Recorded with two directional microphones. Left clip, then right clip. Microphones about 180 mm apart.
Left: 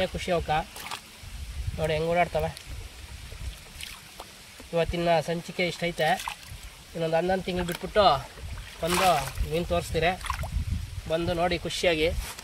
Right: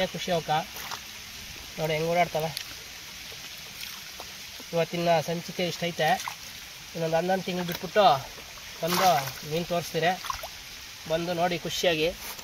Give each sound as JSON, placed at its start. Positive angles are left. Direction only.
{"t": 0.0, "sound": "speech", "side_deg": 15}
{"t": 1.8, "sound": "speech", "side_deg": 5}
{"t": 4.7, "sound": "speech", "side_deg": 10}